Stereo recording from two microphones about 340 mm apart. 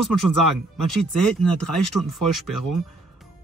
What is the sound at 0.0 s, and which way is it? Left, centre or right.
Speech, right.